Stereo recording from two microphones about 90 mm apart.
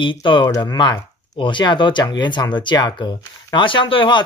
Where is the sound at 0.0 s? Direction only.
65° left (ahead or behind).